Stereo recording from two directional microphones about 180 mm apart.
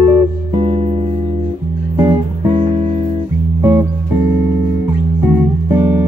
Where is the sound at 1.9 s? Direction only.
15° right (ahead or behind).